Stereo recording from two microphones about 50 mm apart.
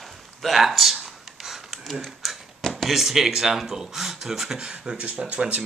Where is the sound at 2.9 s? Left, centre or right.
Centre.